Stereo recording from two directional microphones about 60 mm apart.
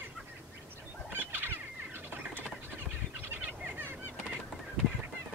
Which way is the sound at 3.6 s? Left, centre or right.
Right.